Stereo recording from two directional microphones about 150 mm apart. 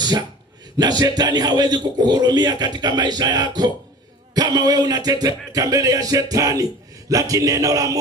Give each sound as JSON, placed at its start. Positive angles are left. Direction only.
{"t": 0.7, "sound": "speech", "side_deg": -25}